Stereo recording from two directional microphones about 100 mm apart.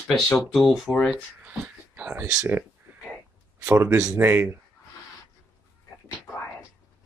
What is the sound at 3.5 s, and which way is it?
Speech, 25° right (ahead or behind).